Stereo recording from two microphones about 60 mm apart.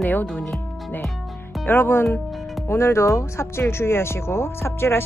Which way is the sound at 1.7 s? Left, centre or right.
Left.